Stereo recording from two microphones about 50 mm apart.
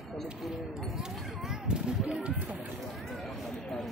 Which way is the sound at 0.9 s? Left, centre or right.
Centre.